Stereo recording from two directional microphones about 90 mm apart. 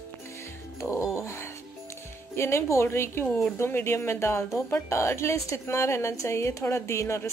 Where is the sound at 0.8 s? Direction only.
35° left (ahead or behind).